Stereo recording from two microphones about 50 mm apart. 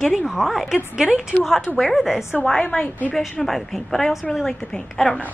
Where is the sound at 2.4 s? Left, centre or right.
Centre.